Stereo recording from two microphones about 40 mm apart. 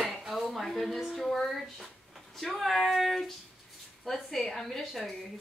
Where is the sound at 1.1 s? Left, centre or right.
Centre.